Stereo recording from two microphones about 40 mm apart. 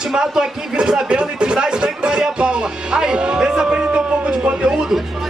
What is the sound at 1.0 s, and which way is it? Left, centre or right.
Music, right.